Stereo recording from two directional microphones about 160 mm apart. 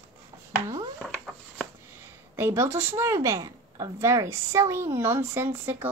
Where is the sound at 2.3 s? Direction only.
15° right (ahead or behind).